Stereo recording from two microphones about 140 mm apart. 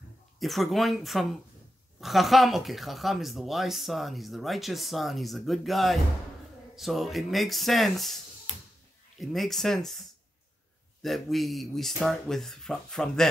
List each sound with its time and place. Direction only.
0.4 s speech: centre (ahead or behind)
8.5 s a sound: 45° left (ahead or behind)
9.2 s speech: centre (ahead or behind)